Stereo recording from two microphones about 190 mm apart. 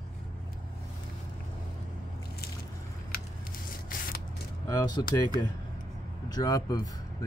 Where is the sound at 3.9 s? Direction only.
45° left (ahead or behind).